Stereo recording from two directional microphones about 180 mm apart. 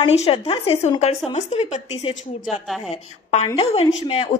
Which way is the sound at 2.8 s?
35° left (ahead or behind).